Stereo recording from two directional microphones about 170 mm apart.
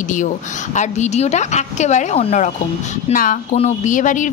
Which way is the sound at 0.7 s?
45° left (ahead or behind).